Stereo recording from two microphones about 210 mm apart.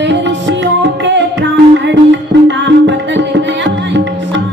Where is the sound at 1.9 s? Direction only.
55° right (ahead or behind).